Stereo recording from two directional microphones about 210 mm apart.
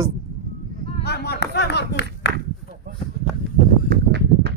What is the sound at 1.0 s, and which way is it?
Clapping, 50° left (ahead or behind).